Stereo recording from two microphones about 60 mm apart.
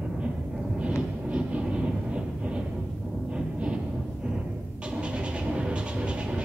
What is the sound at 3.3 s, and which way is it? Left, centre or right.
Music, centre.